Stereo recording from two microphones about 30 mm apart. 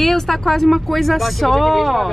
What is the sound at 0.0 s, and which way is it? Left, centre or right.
Speech, centre.